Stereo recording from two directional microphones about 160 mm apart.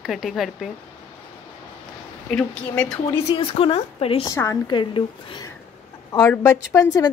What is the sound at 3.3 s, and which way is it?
A woman's voice, 35° left (ahead or behind).